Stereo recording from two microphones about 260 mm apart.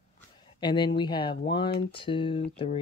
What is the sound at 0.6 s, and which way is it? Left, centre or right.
Speech, centre.